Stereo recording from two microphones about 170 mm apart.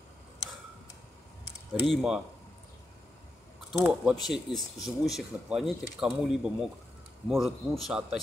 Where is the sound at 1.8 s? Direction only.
5° right (ahead or behind).